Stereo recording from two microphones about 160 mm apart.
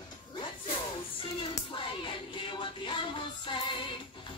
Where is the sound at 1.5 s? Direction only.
30° left (ahead or behind).